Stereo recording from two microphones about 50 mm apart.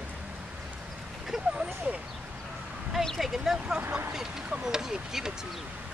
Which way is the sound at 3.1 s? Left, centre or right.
Centre.